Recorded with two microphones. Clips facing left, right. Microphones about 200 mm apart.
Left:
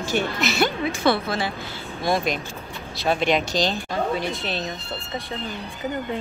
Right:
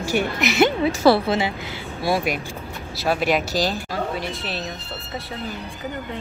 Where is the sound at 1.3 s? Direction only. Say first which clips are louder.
Right 4 dB; 20° right (ahead or behind); by 4.7 s 5° right (ahead or behind).